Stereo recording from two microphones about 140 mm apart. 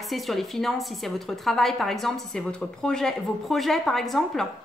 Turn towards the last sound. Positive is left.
turn(degrees=0)  # may be behind; listen again after turning